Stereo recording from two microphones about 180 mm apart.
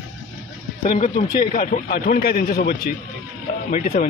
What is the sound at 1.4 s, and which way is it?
A man's voice, 50° left (ahead or behind).